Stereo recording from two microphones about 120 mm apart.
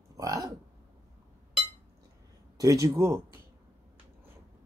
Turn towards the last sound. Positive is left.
turn(degrees=-20)  # may be behind; listen again after turning